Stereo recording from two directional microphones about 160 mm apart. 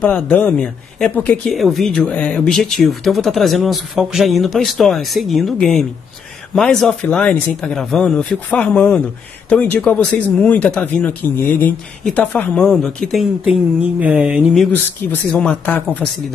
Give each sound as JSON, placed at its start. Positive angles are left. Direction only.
{"t": 0.0, "sound": "speech", "side_deg": 10}
{"t": 15.3, "sound": "speech", "side_deg": 10}